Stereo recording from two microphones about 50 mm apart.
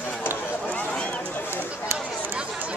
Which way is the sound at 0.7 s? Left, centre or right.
Left.